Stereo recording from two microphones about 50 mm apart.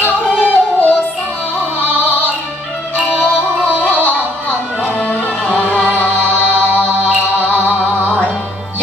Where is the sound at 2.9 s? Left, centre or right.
Left.